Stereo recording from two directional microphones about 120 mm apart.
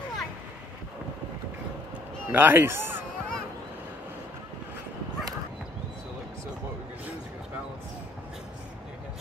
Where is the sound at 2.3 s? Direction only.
15° right (ahead or behind).